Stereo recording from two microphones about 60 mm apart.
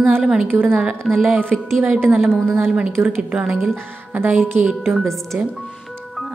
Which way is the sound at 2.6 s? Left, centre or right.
Centre.